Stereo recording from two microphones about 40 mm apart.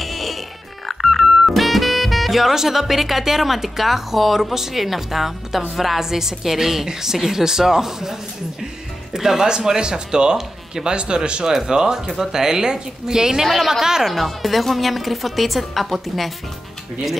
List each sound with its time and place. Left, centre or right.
0.0 s music: centre
0.8 s a woman's voice: centre